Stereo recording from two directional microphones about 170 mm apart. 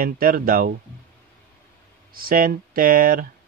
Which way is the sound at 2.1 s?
55° right (ahead or behind).